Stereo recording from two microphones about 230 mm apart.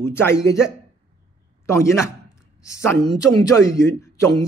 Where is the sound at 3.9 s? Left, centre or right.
Centre.